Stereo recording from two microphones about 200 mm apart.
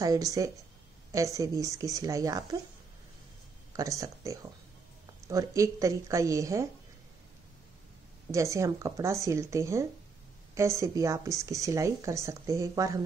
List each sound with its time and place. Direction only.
0.0 s speech: 15° right (ahead or behind)
3.7 s speech: 15° right (ahead or behind)
8.3 s speech: 15° right (ahead or behind)